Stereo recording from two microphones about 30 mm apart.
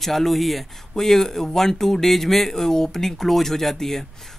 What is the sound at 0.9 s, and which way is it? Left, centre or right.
Speech, centre.